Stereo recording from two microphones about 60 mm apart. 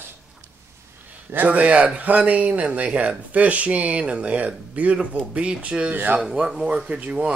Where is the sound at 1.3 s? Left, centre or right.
Right.